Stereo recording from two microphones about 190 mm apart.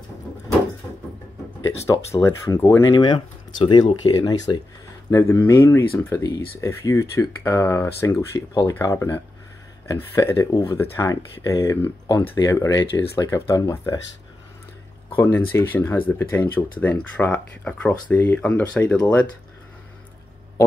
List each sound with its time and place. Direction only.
1.9 s speech: 20° left (ahead or behind)
15.1 s speech: 10° left (ahead or behind)